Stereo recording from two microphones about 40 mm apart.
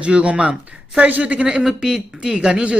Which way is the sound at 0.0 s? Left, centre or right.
Right.